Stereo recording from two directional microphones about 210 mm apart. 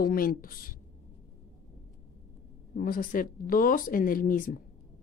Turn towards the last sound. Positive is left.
turn(degrees=40)  # may be behind; listen again after turning